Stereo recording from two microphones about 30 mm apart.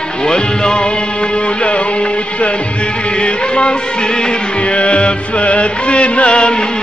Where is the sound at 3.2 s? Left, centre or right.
Left.